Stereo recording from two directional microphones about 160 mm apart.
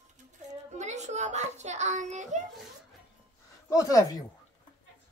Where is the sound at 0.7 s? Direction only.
45° right (ahead or behind).